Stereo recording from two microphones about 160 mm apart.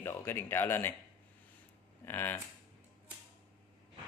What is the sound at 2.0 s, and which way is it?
Speech, 15° left (ahead or behind).